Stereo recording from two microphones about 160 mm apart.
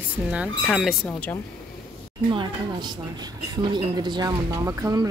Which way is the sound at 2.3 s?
30° right (ahead or behind).